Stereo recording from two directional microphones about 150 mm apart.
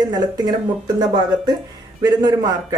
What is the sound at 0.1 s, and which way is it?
A woman's voice, 25° right (ahead or behind).